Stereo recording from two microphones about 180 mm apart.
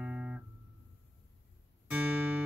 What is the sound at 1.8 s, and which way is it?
Music, 5° right (ahead or behind).